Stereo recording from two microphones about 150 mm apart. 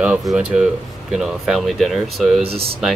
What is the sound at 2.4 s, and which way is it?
Speech, 40° right (ahead or behind).